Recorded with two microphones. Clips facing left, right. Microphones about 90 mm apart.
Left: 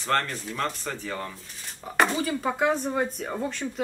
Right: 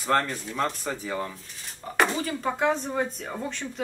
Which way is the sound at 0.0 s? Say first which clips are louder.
Right 2 dB; 10° right (ahead or behind).